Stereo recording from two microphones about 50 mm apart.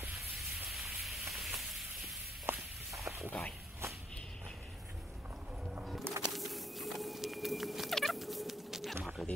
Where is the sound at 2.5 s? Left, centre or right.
Right.